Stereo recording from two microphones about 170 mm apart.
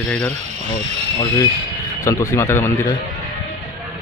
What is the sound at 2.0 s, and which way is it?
Speech, 20° left (ahead or behind).